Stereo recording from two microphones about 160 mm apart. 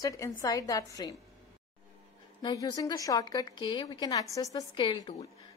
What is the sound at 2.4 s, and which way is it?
A woman's voice, 25° left (ahead or behind).